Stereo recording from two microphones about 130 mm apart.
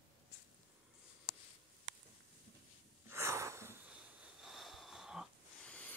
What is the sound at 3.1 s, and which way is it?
Wheeze, 20° right (ahead or behind).